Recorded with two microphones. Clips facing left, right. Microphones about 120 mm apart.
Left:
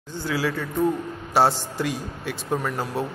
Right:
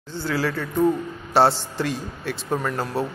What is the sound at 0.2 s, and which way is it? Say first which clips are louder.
A man's voice: right 1 dB; 10° left (ahead or behind).